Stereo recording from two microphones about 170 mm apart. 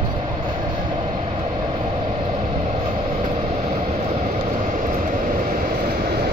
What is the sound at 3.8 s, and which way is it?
Vehicle, 50° right (ahead or behind).